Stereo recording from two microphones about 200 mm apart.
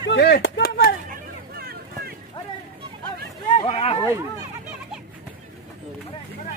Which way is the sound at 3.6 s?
30° left (ahead or behind).